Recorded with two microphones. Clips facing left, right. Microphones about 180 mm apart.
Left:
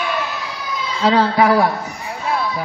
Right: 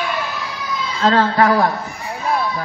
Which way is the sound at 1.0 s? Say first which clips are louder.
Even; 10° left (ahead or behind).